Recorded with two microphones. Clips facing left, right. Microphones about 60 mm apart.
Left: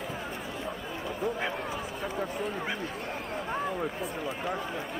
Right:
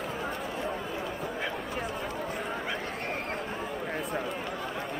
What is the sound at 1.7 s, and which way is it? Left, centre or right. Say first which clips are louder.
Chatter: right 1 dB; right.